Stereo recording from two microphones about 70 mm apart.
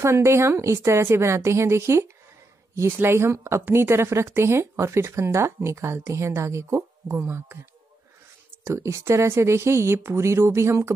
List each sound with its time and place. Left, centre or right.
0.0 s speech: right
8.6 s speech: right